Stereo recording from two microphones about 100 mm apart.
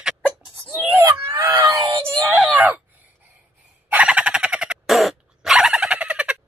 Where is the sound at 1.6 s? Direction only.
30° right (ahead or behind).